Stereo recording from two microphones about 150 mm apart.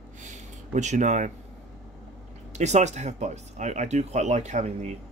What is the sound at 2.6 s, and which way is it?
Speech, 50° right (ahead or behind).